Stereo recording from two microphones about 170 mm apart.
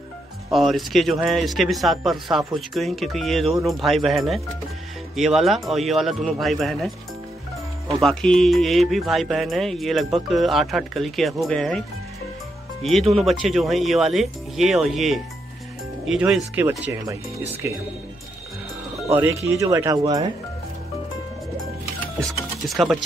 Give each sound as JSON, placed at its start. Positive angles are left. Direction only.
{"t": 0.5, "sound": "speech", "side_deg": 0}
{"t": 7.9, "sound": "speech", "side_deg": 5}
{"t": 13.1, "sound": "speech", "side_deg": 0}
{"t": 16.6, "sound": "speech", "side_deg": -15}
{"t": 19.5, "sound": "speech", "side_deg": -20}